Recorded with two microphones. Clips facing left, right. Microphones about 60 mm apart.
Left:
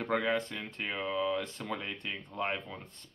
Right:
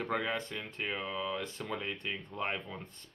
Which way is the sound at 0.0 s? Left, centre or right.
Centre.